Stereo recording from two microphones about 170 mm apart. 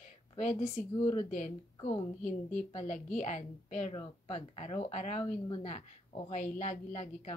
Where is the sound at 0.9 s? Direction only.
30° left (ahead or behind).